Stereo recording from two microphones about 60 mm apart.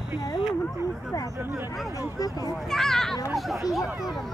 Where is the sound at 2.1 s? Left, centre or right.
Left.